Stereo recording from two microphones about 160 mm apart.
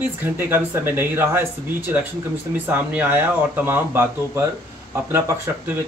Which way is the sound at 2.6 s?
10° right (ahead or behind).